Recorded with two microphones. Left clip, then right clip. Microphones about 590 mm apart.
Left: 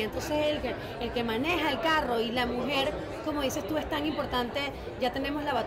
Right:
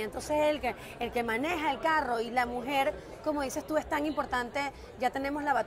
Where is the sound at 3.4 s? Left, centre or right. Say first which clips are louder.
Left 4 dB; right.